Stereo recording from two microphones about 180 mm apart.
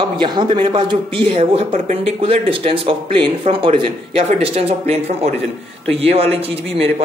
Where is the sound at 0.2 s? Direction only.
25° right (ahead or behind).